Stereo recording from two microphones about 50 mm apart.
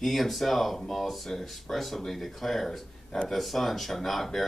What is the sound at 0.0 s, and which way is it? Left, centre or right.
Speech, centre.